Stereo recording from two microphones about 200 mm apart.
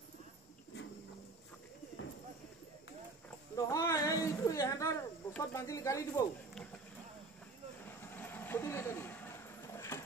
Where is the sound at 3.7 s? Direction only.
15° left (ahead or behind).